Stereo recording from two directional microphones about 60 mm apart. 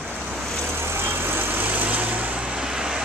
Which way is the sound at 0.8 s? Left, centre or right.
Right.